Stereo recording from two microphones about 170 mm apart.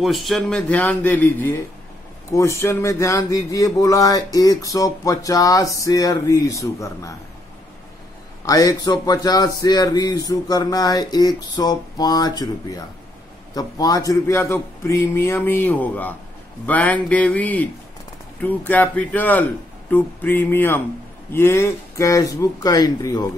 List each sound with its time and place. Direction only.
0.0 s speech: centre (ahead or behind); by 7.1 s 20° left (ahead or behind)
8.5 s speech: 20° left (ahead or behind)
13.6 s speech: 20° left (ahead or behind)